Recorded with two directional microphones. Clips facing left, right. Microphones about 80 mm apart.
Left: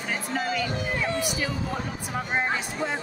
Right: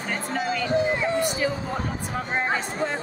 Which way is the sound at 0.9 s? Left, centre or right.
Right.